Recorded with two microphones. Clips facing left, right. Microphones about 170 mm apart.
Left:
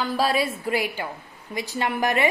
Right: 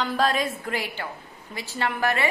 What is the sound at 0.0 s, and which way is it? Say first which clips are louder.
A woman's voice: left 1 dB; 10° left (ahead or behind).